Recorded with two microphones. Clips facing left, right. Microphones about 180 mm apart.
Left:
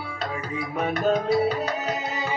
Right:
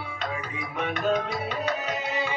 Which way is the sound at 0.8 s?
40° left (ahead or behind).